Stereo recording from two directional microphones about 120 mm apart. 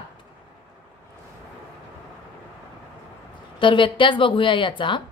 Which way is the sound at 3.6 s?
45° left (ahead or behind).